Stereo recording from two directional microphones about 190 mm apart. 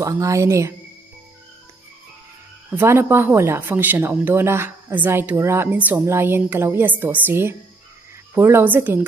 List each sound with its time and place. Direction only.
0.0 s speech: 15° right (ahead or behind)
2.7 s speech: 10° right (ahead or behind)